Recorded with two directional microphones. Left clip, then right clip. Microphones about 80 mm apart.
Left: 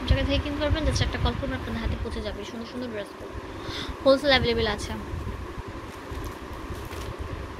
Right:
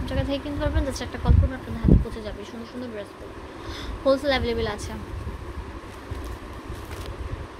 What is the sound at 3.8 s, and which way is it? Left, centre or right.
Speech, centre.